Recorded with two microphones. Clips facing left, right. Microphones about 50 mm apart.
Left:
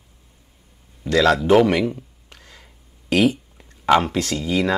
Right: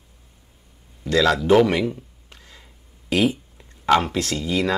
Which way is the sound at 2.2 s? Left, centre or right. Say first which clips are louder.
Left 1 dB; left.